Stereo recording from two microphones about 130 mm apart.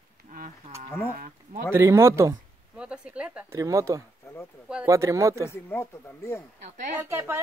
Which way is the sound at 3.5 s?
25° right (ahead or behind).